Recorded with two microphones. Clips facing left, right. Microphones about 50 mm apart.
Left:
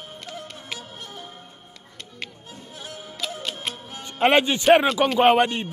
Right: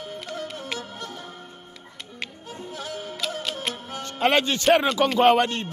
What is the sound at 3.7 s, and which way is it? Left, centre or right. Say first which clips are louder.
Music: even; centre.